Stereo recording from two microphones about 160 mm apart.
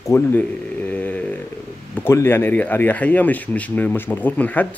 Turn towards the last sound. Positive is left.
turn(degrees=10)  # may be behind; listen again after turning